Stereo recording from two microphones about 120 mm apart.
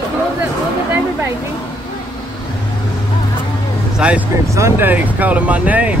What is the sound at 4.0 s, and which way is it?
Speech, 10° right (ahead or behind).